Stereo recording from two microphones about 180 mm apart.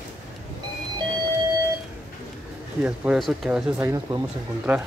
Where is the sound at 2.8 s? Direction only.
5° right (ahead or behind).